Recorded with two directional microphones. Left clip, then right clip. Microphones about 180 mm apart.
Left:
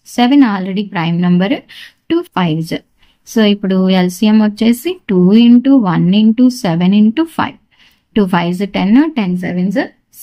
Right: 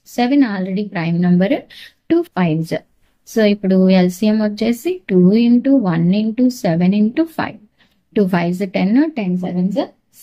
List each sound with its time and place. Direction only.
0.0 s speech: 25° left (ahead or behind)